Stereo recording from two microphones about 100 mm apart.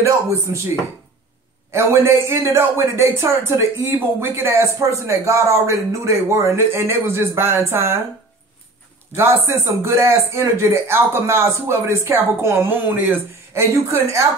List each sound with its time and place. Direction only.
0.0 s a man's voice: 30° right (ahead or behind)
1.7 s a man's voice: 25° right (ahead or behind)
9.1 s a man's voice: 25° right (ahead or behind)